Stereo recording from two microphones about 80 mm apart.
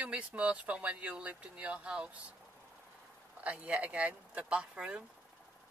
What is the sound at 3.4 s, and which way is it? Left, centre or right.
Speech, centre.